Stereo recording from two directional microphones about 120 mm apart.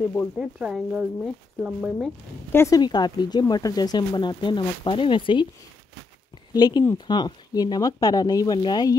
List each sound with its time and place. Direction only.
0.4 s speech: 5° right (ahead or behind)
2.5 s speech: 20° left (ahead or behind)
2.8 s speech: 35° left (ahead or behind)
6.5 s speech: 35° left (ahead or behind)